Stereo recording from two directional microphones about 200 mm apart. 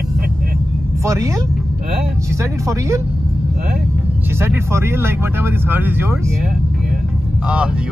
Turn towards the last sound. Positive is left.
turn(degrees=-10)  # may be behind; listen again after turning